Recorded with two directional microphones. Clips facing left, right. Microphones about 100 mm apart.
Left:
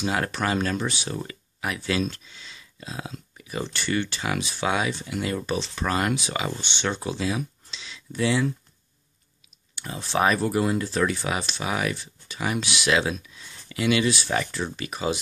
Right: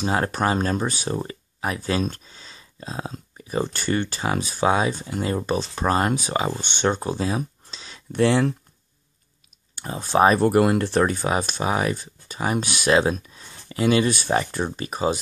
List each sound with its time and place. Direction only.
0.0 s speech: 35° right (ahead or behind)
6.6 s speech: 45° right (ahead or behind)
8.1 s speech: 55° right (ahead or behind)
9.8 s speech: 45° right (ahead or behind)
10.4 s speech: 60° right (ahead or behind)
11.0 s speech: 40° right (ahead or behind)